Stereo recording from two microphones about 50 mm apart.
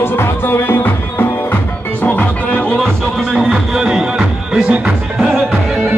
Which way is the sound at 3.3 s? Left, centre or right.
Centre.